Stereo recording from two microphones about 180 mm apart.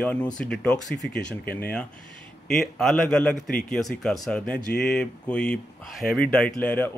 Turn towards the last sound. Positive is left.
turn(degrees=10)  # may be behind; listen again after turning